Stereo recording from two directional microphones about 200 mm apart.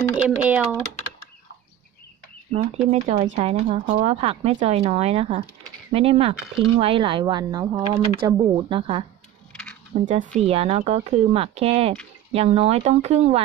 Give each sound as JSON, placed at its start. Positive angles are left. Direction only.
{"t": 0.2, "sound": "speech", "side_deg": -10}
{"t": 2.5, "sound": "speech", "side_deg": -35}
{"t": 9.5, "sound": "a sound", "side_deg": 5}
{"t": 10.0, "sound": "speech", "side_deg": -40}